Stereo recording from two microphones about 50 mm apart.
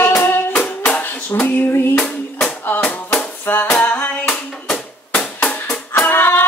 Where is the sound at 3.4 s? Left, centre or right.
Left.